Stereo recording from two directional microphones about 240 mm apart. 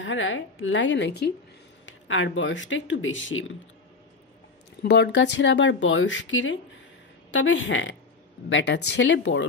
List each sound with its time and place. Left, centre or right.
0.0 s speech: left
4.8 s speech: left